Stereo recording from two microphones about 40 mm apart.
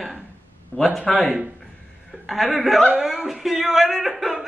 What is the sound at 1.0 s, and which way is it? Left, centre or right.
Speech, left.